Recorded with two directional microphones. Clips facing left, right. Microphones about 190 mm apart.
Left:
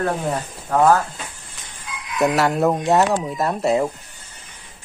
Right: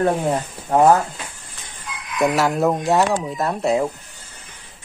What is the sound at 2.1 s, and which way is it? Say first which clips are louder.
Speech: even; centre (ahead or behind).